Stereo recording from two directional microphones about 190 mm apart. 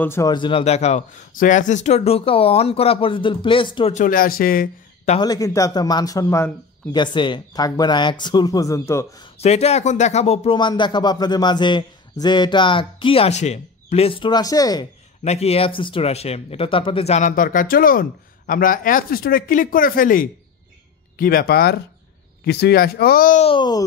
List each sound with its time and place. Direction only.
0.0 s speech: 15° left (ahead or behind)
0.3 s speech: 25° left (ahead or behind)
3.9 s speech: 45° left (ahead or behind)
5.2 s speech: 20° left (ahead or behind)
9.4 s speech: 35° left (ahead or behind)
15.2 s a man's voice: 35° left (ahead or behind); by 23.4 s 50° left (ahead or behind)
23.4 s speech: 25° left (ahead or behind)